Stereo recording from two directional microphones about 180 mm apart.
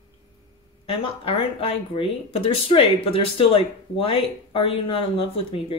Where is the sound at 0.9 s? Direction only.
30° left (ahead or behind).